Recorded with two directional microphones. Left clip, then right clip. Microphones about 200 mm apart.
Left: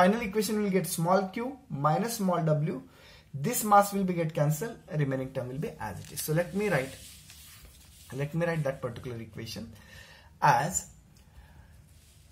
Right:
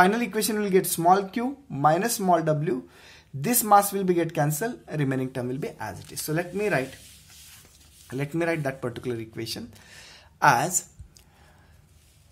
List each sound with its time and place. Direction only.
0.0 s speech: 50° right (ahead or behind)
8.1 s speech: 45° right (ahead or behind)